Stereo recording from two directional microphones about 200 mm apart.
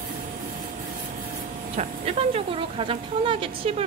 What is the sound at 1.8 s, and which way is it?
Speech, 30° right (ahead or behind).